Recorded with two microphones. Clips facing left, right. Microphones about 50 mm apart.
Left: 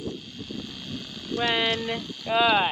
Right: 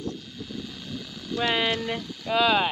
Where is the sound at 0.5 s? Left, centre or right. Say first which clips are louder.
Left 1 dB; left.